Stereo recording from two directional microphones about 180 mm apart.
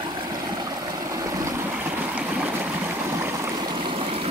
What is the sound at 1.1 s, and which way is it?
Stream, 20° right (ahead or behind).